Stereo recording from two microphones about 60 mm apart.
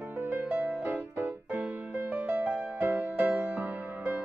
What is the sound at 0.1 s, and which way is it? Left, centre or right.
Music, right.